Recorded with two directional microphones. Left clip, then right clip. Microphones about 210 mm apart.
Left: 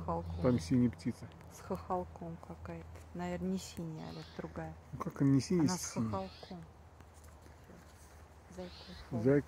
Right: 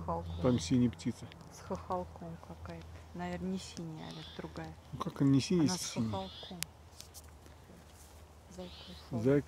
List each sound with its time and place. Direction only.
0.4 s speech: centre (ahead or behind)
1.6 s speech: 35° left (ahead or behind)
2.6 s speech: 50° left (ahead or behind)
4.9 s speech: 5° right (ahead or behind)
5.6 s speech: 30° left (ahead or behind)
8.5 s speech: 20° left (ahead or behind)